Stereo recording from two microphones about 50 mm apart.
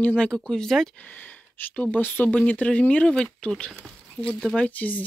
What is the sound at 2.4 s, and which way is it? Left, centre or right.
Speech, left.